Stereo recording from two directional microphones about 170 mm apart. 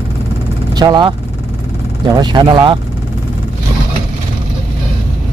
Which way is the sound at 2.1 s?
25° right (ahead or behind).